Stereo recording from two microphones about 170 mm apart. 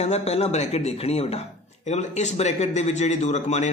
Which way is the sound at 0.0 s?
40° left (ahead or behind).